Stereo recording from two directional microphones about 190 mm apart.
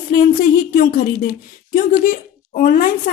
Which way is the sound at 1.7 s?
45° left (ahead or behind).